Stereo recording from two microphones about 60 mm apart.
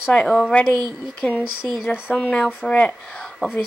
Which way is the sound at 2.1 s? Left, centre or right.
Left.